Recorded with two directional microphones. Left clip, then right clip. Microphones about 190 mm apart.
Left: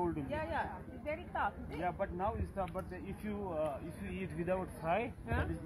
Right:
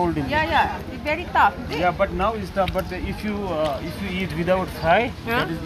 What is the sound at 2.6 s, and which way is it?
Speech, 5° right (ahead or behind).